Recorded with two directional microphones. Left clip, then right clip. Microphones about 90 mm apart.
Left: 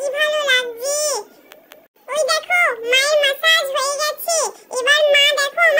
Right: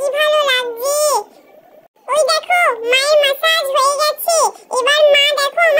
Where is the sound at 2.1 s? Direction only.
30° right (ahead or behind).